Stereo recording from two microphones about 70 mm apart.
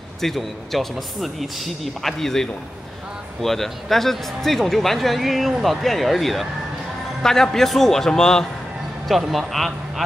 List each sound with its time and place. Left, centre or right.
0.2 s speech: centre
7.5 s a man's voice: centre